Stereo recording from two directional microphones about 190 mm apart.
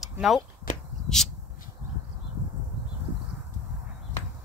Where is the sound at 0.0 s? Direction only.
Centre (ahead or behind).